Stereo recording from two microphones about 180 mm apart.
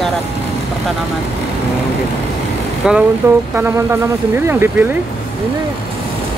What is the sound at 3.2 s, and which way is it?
Speech, 15° right (ahead or behind).